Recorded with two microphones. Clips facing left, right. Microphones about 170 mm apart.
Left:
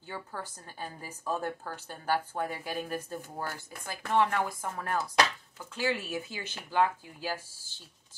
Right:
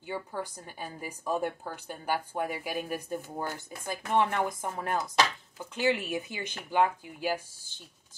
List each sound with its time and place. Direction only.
0.0 s a woman's voice: 15° right (ahead or behind)